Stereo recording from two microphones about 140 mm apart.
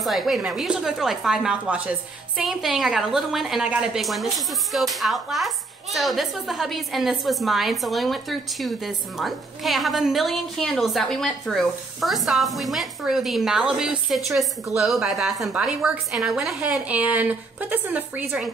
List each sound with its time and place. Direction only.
0.0 s a woman's voice: centre (ahead or behind)